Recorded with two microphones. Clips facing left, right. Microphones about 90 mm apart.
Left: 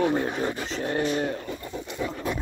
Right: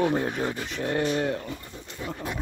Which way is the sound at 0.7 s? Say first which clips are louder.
Right 2 dB; 55° right (ahead or behind).